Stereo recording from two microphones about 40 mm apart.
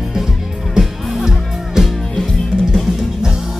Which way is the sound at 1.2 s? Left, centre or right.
Centre.